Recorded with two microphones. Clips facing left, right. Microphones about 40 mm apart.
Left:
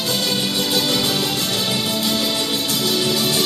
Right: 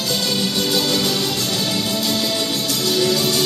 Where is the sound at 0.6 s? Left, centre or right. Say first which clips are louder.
Even; centre.